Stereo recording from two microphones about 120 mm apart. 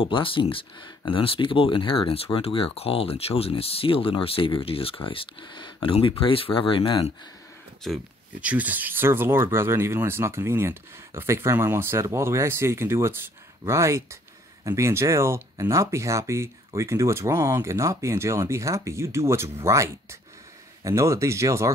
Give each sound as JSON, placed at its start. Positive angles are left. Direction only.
{"t": 0.0, "sound": "speech", "side_deg": 45}
{"t": 7.8, "sound": "speech", "side_deg": 0}
{"t": 8.4, "sound": "speech", "side_deg": -10}